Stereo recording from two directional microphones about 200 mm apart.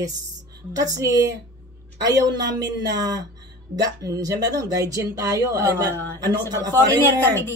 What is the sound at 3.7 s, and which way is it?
Speech, 20° right (ahead or behind).